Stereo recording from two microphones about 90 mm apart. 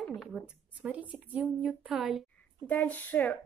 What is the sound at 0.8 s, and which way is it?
A woman's voice, 15° right (ahead or behind).